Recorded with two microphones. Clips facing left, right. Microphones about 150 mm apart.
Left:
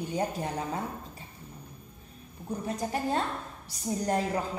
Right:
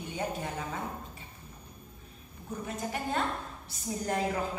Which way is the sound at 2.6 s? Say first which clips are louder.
Left 4 dB; 35° left (ahead or behind).